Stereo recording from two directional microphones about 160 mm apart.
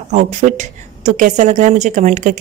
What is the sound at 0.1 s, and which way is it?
Speech, 45° right (ahead or behind).